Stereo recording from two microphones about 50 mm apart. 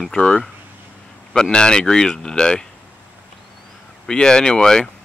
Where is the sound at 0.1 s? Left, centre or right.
Centre.